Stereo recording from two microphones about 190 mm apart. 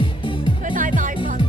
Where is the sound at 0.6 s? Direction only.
45° right (ahead or behind).